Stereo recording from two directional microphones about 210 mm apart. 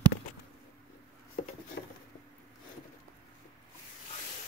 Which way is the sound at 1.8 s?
55° left (ahead or behind).